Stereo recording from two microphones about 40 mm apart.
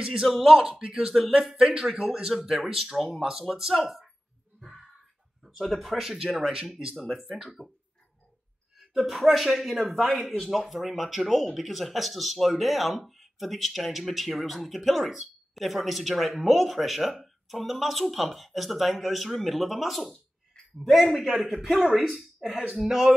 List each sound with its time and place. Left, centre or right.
0.0 s speech: centre
5.4 s speech: centre
7.0 s speech: centre
9.0 s speech: centre
21.3 s speech: centre
22.1 s speech: centre